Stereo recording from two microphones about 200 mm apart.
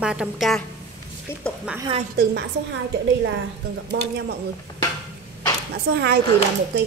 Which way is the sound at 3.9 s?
60° right (ahead or behind).